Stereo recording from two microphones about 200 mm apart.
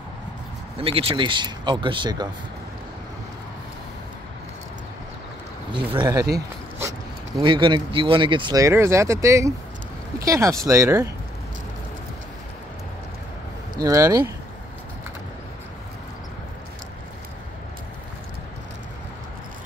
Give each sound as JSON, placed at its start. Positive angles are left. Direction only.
{"t": 0.7, "sound": "speech", "side_deg": -25}
{"t": 5.7, "sound": "speech", "side_deg": -25}
{"t": 7.4, "sound": "speech", "side_deg": -25}
{"t": 13.7, "sound": "speech", "side_deg": -15}